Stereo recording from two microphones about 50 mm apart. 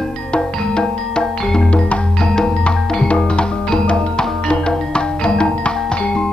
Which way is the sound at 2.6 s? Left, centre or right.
Left.